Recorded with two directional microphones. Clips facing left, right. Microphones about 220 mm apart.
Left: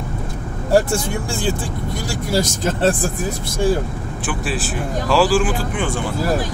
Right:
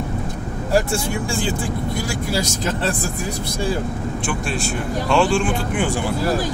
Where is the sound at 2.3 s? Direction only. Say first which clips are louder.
Left 5 dB; 50° left (ahead or behind).